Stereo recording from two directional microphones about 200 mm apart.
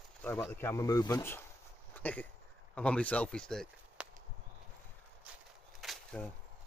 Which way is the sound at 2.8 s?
5° left (ahead or behind).